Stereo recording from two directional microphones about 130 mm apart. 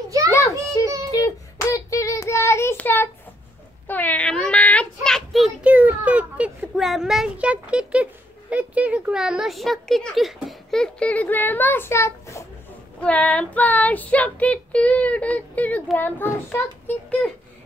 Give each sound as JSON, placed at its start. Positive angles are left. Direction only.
{"t": 0.3, "sound": "child singing", "side_deg": 25}
{"t": 5.7, "sound": "a child's voice", "side_deg": -10}
{"t": 13.0, "sound": "child singing", "side_deg": 10}